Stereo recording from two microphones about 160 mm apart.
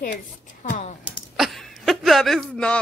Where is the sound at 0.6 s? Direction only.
55° left (ahead or behind).